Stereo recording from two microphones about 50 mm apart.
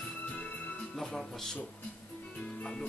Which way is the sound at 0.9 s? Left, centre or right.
Centre.